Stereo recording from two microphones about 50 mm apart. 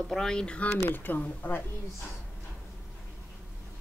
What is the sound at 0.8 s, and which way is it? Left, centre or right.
Speech, left.